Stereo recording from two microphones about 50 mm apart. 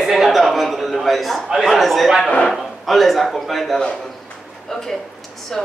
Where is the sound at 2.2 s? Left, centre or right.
Centre.